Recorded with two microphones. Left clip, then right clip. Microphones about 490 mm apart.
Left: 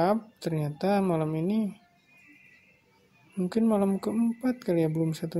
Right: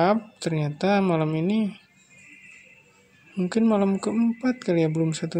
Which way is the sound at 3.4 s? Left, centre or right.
Right.